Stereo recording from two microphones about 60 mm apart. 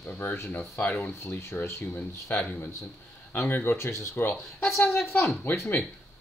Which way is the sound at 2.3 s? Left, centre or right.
Left.